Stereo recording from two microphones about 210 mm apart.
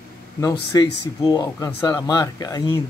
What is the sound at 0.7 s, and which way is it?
Speech, 15° left (ahead or behind).